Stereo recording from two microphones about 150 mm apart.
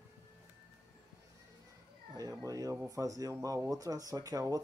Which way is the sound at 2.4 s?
20° right (ahead or behind).